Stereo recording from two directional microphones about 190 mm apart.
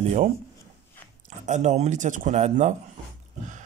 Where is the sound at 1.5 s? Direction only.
40° right (ahead or behind).